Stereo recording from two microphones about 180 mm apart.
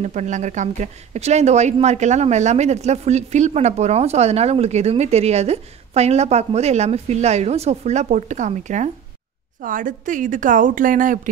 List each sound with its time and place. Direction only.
0.0 s a woman's voice: 40° right (ahead or behind)